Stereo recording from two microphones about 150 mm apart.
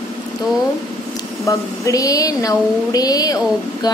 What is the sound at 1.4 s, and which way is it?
A woman's voice, 20° left (ahead or behind).